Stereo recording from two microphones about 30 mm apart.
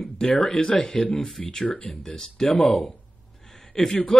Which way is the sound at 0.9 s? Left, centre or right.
Centre.